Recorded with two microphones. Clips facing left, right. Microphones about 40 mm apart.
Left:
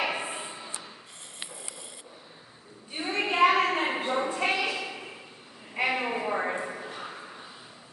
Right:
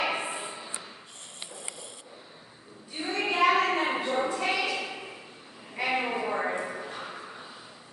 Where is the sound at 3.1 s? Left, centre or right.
Left.